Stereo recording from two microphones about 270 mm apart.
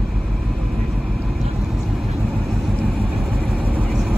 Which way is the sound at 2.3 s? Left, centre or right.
Centre.